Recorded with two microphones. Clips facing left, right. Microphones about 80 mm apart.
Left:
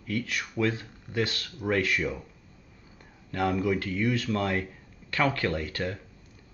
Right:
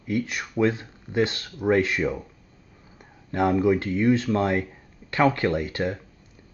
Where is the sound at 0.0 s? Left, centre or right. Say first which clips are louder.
Right 4 dB; right.